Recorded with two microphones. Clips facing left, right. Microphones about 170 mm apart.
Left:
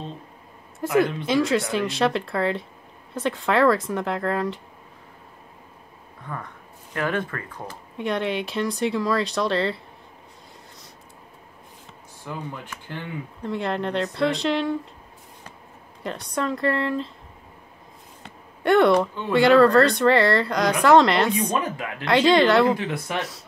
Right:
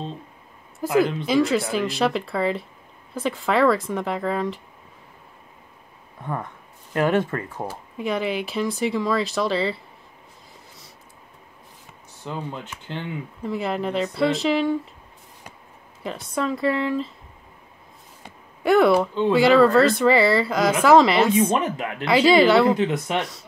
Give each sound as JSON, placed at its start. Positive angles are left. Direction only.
{"t": 0.7, "sound": "speech", "side_deg": 0}
{"t": 6.2, "sound": "speech", "side_deg": -25}
{"t": 7.6, "sound": "speech", "side_deg": 0}
{"t": 12.2, "sound": "speech", "side_deg": -25}
{"t": 13.4, "sound": "speech", "side_deg": -5}
{"t": 16.0, "sound": "speech", "side_deg": 0}
{"t": 18.2, "sound": "a sound", "side_deg": -5}
{"t": 19.3, "sound": "speech", "side_deg": 0}
{"t": 21.5, "sound": "speech", "side_deg": -25}
{"t": 22.0, "sound": "speech", "side_deg": -5}
{"t": 22.8, "sound": "speech", "side_deg": -20}